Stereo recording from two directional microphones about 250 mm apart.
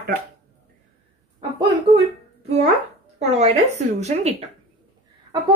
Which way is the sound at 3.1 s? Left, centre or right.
Right.